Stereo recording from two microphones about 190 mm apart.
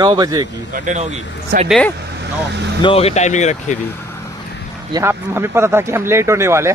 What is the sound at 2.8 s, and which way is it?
Speech, 30° left (ahead or behind).